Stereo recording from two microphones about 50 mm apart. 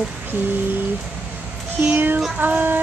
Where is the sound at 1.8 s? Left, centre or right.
Right.